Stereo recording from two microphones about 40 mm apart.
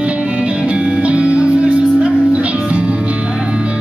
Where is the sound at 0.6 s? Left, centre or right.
Right.